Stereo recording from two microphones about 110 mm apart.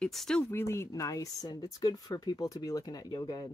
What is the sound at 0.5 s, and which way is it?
Speech, 25° left (ahead or behind).